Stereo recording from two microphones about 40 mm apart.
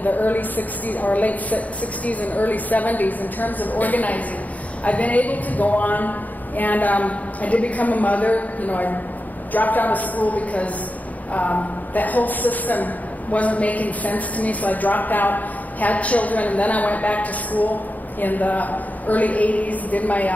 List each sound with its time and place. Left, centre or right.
0.0 s a woman's voice: left